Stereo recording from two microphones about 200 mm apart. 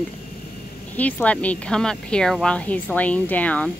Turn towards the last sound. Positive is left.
turn(degrees=5)  # may be behind; listen again after turning